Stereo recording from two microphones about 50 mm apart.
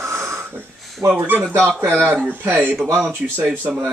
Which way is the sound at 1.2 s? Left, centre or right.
Right.